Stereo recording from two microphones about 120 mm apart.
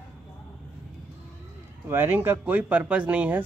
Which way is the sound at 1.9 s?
20° right (ahead or behind).